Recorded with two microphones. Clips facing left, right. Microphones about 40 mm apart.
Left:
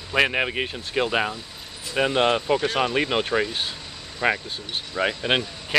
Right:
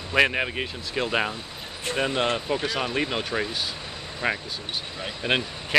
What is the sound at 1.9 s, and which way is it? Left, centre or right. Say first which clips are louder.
Speech: left 5 dB; centre.